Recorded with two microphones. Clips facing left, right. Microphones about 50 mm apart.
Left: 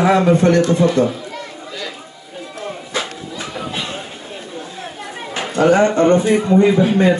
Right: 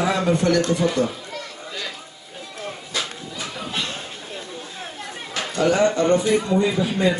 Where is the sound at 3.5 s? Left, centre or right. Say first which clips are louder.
Left 3 dB; centre.